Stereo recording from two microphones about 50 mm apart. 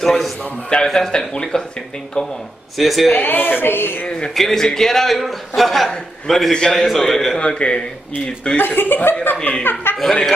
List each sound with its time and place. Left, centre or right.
0.0 s a man's voice: centre
0.8 s a man's voice: centre
2.8 s a man's voice: centre
3.1 s speech: left
4.3 s a man's voice: centre
7.3 s a man's voice: left
8.5 s speech: left
9.4 s a man's voice: left
10.0 s a man's voice: centre